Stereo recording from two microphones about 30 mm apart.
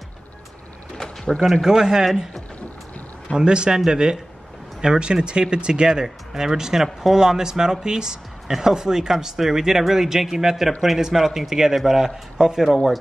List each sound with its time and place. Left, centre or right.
1.0 s drawer open or close: left
1.6 s speech: centre
3.3 s a man's voice: right
3.7 s speech: right
12.6 s speech: centre